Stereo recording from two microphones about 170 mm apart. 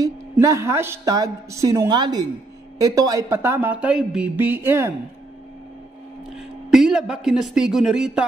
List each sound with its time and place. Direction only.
0.0 s a man's voice: 20° right (ahead or behind)
6.3 s speech: centre (ahead or behind)